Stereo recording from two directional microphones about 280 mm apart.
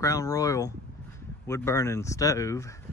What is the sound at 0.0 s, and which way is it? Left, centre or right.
Speech, centre.